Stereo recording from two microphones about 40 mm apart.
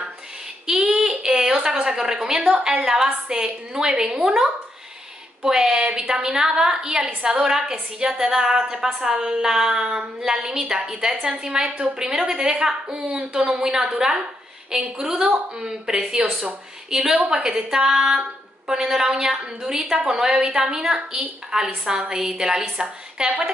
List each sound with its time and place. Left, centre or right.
0.7 s a woman's voice: centre
15.1 s a woman's voice: right
15.6 s a woman's voice: centre